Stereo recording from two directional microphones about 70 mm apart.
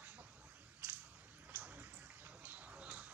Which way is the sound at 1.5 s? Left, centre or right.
Right.